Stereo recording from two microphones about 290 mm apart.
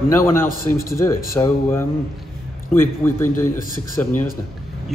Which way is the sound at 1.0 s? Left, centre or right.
Centre.